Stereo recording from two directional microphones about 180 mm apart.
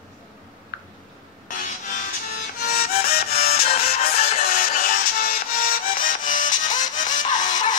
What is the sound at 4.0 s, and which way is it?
Music, 60° left (ahead or behind).